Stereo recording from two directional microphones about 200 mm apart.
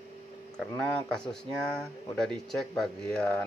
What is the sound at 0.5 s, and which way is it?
Speech, 5° left (ahead or behind).